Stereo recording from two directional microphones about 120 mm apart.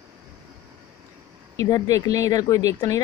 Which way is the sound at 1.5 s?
30° left (ahead or behind).